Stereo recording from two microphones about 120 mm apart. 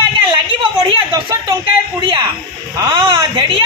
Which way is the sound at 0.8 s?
45° right (ahead or behind).